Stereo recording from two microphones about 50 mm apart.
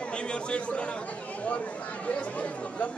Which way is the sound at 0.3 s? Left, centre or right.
Left.